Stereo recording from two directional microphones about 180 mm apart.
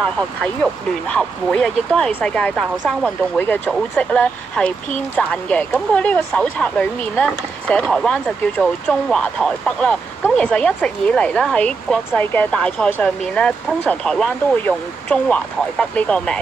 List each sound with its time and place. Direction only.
1.0 s speech: 5° left (ahead or behind)